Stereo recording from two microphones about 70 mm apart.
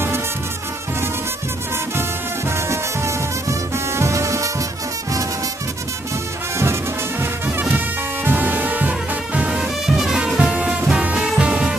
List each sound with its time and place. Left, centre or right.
2.5 s music: right
6.6 s music: right
7.4 s music: right
9.8 s music: centre